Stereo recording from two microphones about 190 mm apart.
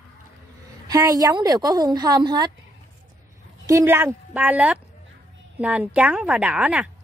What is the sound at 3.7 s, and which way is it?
A woman's voice, 15° right (ahead or behind).